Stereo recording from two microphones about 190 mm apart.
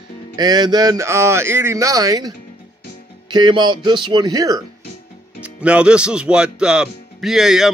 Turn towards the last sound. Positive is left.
turn(degrees=0)  # may be behind; listen again after turning